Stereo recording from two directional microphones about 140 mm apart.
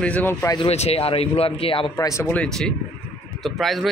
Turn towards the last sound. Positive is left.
turn(degrees=0)  # may be behind; listen again after turning